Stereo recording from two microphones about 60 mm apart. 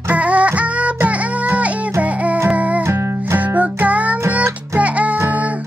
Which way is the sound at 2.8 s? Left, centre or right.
Right.